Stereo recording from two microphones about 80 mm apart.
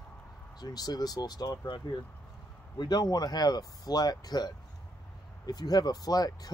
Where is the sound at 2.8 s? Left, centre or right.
Left.